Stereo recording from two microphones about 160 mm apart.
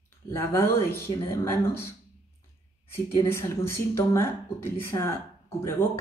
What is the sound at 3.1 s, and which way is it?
Speech, 15° left (ahead or behind).